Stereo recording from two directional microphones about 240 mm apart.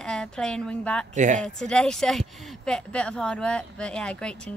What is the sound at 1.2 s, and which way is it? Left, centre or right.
Speech, right.